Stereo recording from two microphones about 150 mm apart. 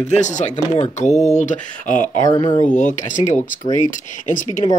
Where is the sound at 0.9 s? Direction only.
50° left (ahead or behind).